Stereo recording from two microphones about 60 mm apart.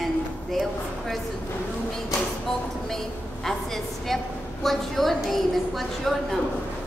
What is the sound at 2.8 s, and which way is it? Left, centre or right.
A woman's voice, centre.